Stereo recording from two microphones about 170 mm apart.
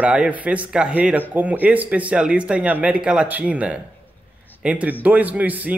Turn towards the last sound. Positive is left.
turn(degrees=-10)  # may be behind; listen again after turning